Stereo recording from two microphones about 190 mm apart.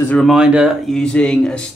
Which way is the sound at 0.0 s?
10° left (ahead or behind).